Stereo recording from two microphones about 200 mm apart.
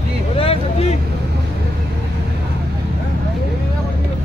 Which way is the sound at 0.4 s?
30° left (ahead or behind).